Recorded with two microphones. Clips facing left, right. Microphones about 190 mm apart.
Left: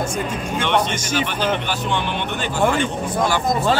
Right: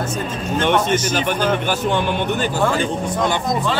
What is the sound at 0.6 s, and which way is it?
Speech, 45° right (ahead or behind).